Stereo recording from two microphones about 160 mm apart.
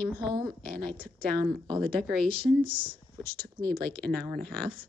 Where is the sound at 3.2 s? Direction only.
65° right (ahead or behind).